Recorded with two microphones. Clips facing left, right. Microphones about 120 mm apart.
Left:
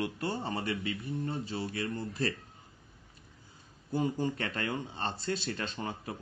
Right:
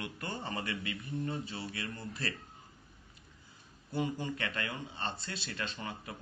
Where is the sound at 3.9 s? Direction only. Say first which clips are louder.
Left 4 dB; 35° left (ahead or behind).